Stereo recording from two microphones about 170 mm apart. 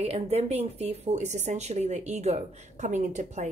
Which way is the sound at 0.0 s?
40° right (ahead or behind).